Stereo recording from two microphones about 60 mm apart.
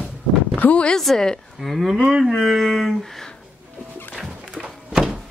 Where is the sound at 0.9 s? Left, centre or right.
Centre.